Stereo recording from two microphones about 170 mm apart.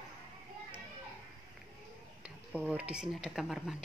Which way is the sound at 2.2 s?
10° right (ahead or behind).